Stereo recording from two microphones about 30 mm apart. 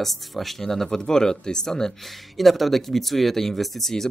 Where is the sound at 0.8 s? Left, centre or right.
Left.